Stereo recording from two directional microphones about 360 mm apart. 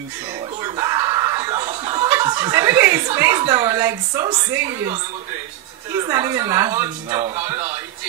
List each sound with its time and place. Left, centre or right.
0.6 s snicker: centre
5.9 s a woman's voice: centre